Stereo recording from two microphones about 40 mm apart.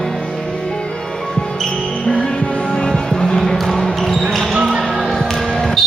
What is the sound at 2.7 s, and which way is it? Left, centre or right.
Music, centre.